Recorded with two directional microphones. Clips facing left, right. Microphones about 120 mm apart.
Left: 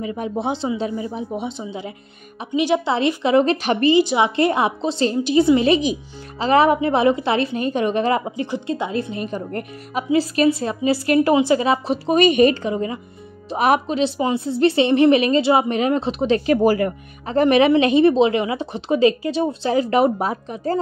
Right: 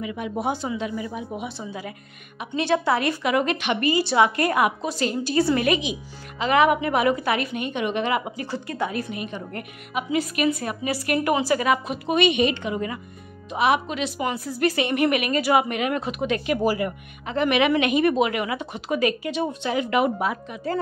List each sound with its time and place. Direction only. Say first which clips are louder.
0.0 s a woman's voice: left 3 dB; 35° left (ahead or behind)
3.9 s a woman's voice: left 1 dB; 20° left (ahead or behind)
6.4 s speech: left 4 dB; 30° left (ahead or behind)
8.3 s a woman's voice: left 6 dB; 20° left (ahead or behind)
13.5 s speech: left 3 dB; 45° left (ahead or behind)
13.8 s a woman's voice: left 6 dB; 30° left (ahead or behind)
16.6 s speech: left 6 dB; 45° left (ahead or behind)